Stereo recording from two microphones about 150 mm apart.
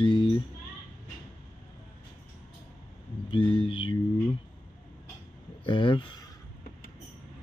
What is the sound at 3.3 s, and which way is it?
Speech, 35° left (ahead or behind).